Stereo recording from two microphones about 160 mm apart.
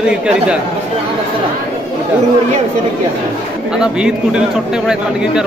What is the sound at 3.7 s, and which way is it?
A man's voice, 5° right (ahead or behind).